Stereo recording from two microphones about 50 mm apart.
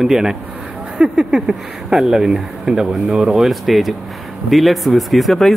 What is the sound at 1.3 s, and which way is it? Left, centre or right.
Speech, centre.